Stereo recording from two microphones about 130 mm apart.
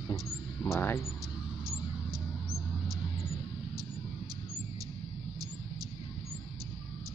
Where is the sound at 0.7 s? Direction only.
20° left (ahead or behind).